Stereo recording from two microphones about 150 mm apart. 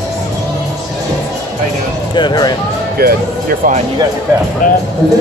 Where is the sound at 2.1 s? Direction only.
30° left (ahead or behind).